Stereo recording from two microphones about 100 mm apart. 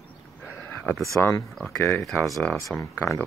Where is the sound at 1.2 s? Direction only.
20° left (ahead or behind).